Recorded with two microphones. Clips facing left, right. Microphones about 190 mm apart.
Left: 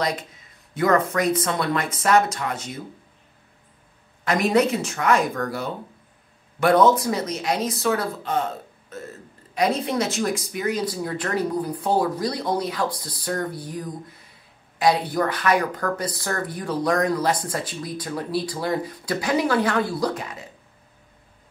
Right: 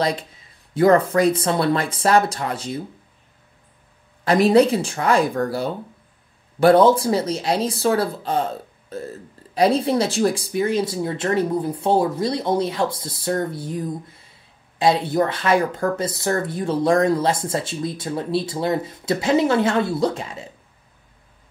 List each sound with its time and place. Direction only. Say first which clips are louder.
0.7 s speech: right 5 dB; 30° right (ahead or behind)
4.2 s speech: right 5 dB; 30° right (ahead or behind)